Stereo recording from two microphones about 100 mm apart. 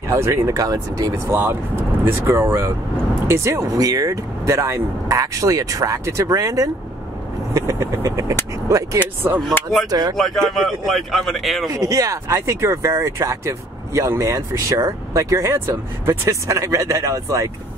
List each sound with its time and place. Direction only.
0.1 s speech: 30° right (ahead or behind)
9.8 s speech: 40° right (ahead or behind)
10.1 s a man's voice: centre (ahead or behind)
11.7 s speech: 35° right (ahead or behind)